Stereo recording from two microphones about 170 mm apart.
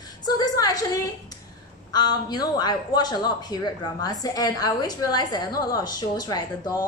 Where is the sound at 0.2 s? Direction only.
25° left (ahead or behind).